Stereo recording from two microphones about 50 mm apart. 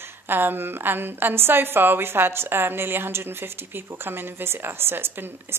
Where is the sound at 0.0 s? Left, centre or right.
Right.